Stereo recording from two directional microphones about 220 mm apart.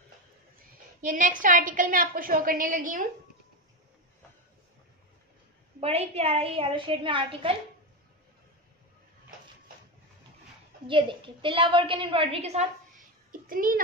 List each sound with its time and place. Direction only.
1.0 s a woman's voice: 35° right (ahead or behind)
5.8 s a woman's voice: 30° right (ahead or behind)
10.9 s a woman's voice: 20° right (ahead or behind)
13.3 s a sound: 40° right (ahead or behind)